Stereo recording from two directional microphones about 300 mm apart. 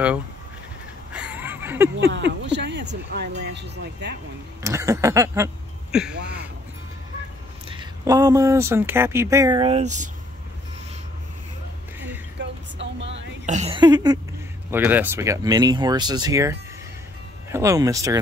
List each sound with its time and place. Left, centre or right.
1.1 s a sound: centre
2.1 s speech: right
4.6 s speech: centre
7.6 s speech: centre
12.4 s a sound: right
13.5 s speech: centre